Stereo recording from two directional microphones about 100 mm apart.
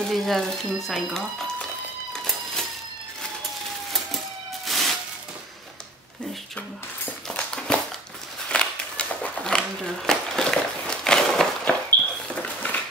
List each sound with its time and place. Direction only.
0.1 s speech: 5° left (ahead or behind)
4.6 s music: centre (ahead or behind)
7.2 s a sound: 10° left (ahead or behind)